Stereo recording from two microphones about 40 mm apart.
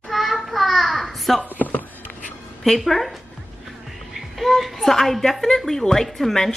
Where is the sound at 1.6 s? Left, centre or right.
Left.